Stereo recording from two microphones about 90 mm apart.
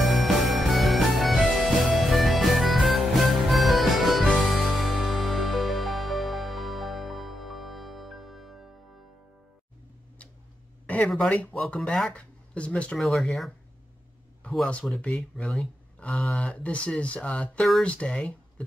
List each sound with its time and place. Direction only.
0.0 s music: centre (ahead or behind)
11.2 s speech: 20° left (ahead or behind)
11.7 s speech: 5° left (ahead or behind)
12.9 s speech: centre (ahead or behind)
15.0 s speech: centre (ahead or behind)
16.5 s speech: 15° left (ahead or behind)